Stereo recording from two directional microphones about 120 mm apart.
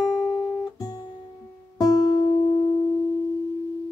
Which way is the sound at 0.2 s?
35° left (ahead or behind).